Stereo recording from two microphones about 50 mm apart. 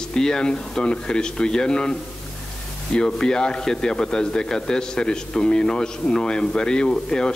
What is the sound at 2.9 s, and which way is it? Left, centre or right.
A man's voice, centre.